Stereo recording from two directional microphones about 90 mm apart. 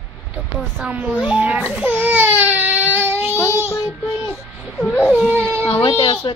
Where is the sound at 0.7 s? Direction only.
15° right (ahead or behind).